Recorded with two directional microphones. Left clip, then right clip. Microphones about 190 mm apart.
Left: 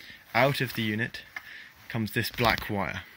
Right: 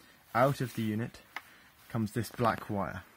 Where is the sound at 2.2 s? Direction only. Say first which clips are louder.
Left 6 dB; 5° left (ahead or behind).